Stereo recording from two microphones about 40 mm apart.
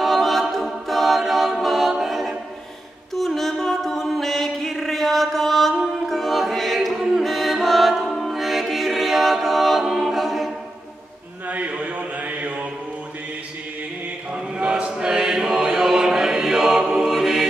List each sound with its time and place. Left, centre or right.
0.0 s a capella: centre
3.2 s music: centre
11.4 s mantra: right
14.3 s chant: right
14.9 s choir: centre